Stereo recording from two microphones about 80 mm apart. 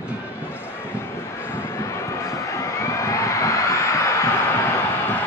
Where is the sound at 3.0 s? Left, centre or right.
Left.